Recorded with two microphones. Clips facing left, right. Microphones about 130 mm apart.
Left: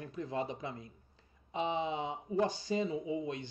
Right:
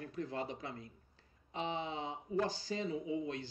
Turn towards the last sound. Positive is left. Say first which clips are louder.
# left 2 dB
turn(degrees=20)  # may be behind; listen again after turning